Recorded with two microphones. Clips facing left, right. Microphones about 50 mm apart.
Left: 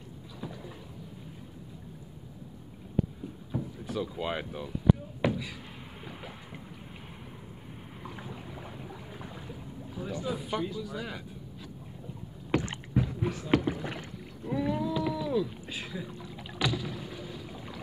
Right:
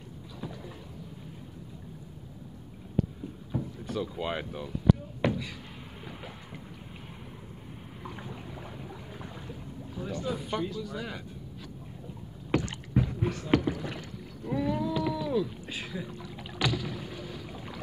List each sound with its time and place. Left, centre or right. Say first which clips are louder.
3.5 s speech: right 1 dB; centre
5.2 s a sound: even; centre
8.0 s boat: right 1 dB; centre
10.2 s speech: even; centre
12.5 s rowboat: right 1 dB; centre
12.9 s a sound: right 1 dB; centre
13.3 s speech: right 1 dB; centre
13.8 s rowboat: even; centre
14.5 s a sound: right 1 dB; centre
15.7 s boat: right 1 dB; centre
16.5 s rowboat: right 1 dB; centre
17.3 s boat: right 1 dB; centre